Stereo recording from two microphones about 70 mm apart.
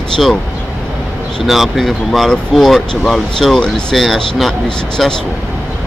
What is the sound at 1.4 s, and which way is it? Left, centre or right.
Speech, centre.